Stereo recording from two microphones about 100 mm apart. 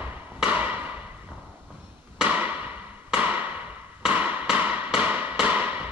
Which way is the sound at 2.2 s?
15° right (ahead or behind).